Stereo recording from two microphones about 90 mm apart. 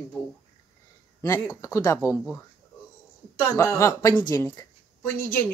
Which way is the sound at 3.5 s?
30° left (ahead or behind).